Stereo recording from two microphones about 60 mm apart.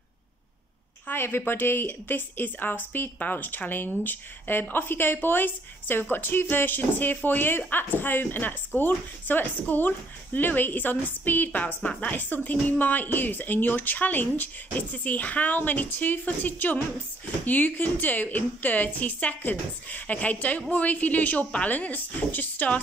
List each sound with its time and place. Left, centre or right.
1.0 s a woman's voice: left